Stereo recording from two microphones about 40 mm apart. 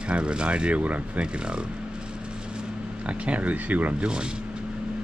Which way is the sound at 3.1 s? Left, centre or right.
Right.